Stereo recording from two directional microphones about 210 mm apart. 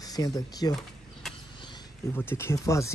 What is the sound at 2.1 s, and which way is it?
Speech, 10° left (ahead or behind).